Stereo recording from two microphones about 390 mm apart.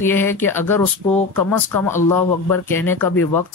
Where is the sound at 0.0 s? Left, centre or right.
Centre.